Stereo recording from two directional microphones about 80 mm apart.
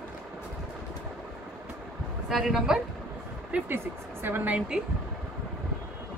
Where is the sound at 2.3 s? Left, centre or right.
Centre.